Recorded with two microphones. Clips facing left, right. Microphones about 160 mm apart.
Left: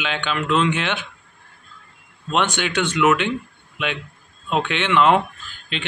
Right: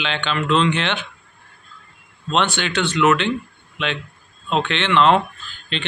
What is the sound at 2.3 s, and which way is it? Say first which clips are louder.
Speech: right 1 dB; 10° left (ahead or behind).